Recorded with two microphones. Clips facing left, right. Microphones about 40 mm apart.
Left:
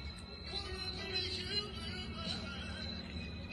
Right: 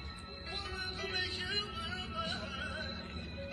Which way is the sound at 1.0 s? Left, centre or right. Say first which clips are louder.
Right 4 dB; right.